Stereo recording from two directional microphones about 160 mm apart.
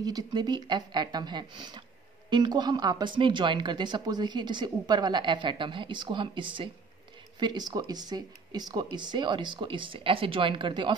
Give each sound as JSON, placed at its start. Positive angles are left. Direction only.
{"t": 0.0, "sound": "speech", "side_deg": -25}